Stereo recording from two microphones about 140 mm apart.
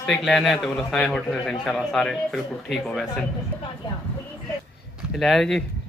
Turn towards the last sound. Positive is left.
turn(degrees=5)  # may be behind; listen again after turning